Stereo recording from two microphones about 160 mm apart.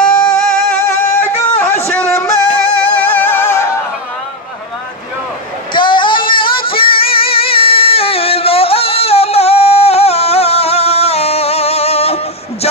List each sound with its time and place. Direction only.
0.0 s music: 5° left (ahead or behind)
0.8 s music: 15° left (ahead or behind)
1.6 s a sound: 15° left (ahead or behind)
2.8 s music: 10° left (ahead or behind)
5.7 s music: 30° left (ahead or behind)